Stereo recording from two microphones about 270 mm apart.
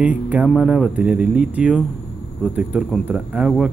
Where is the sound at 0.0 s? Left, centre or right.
Centre.